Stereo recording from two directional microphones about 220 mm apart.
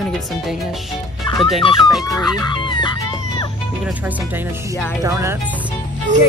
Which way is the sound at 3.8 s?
5° right (ahead or behind).